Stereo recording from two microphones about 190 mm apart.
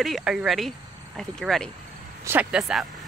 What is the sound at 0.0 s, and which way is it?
Speech, centre (ahead or behind).